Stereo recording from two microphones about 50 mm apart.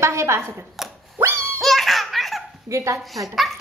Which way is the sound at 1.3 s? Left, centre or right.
Right.